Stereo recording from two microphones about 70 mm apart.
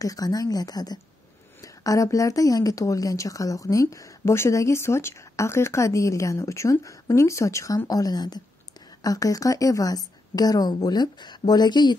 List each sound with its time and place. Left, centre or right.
0.0 s speech: left
1.6 s speech: left
9.0 s a woman's voice: left